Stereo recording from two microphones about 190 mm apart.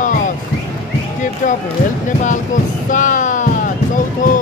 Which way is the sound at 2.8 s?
45° left (ahead or behind).